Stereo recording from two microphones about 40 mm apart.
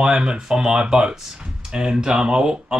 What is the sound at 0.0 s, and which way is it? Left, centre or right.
Speech, right.